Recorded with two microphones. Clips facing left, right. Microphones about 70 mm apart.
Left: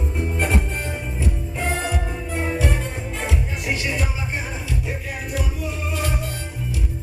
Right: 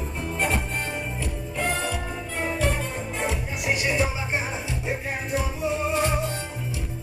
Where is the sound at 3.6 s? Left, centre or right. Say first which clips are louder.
Right 4 dB; right.